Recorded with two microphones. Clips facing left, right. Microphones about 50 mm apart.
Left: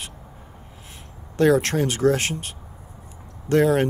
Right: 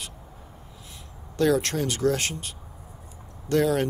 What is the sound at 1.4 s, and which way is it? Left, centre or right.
Speech, left.